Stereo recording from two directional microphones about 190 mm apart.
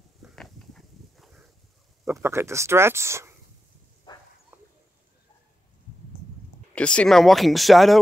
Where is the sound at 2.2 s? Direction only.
15° right (ahead or behind).